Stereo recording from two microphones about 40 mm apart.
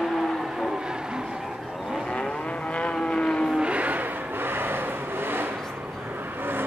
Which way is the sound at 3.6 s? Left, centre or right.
Right.